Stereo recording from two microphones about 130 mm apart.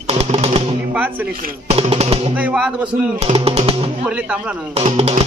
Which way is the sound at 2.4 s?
10° right (ahead or behind).